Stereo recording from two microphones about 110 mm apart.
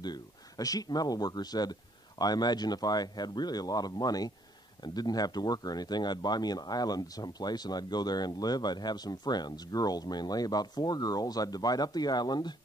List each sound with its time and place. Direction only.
0.0 s speech: 35° left (ahead or behind)